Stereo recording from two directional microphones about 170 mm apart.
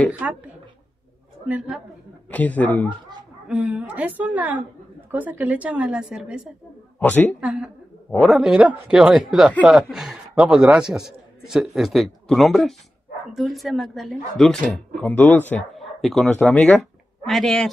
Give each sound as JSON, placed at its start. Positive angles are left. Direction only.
{"t": 0.2, "sound": "a woman's voice", "side_deg": -5}
{"t": 1.5, "sound": "a man's voice", "side_deg": -5}
{"t": 2.3, "sound": "speech", "side_deg": 10}
{"t": 3.4, "sound": "a woman's voice", "side_deg": -10}
{"t": 7.0, "sound": "speech", "side_deg": 10}
{"t": 7.3, "sound": "a man's voice", "side_deg": -5}